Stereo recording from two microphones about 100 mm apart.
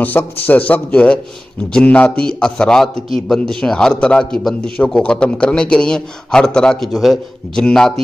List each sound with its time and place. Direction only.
0.0 s a man's voice: 15° left (ahead or behind)